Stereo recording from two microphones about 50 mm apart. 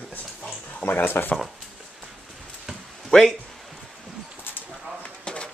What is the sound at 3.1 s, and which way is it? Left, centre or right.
Speech, centre.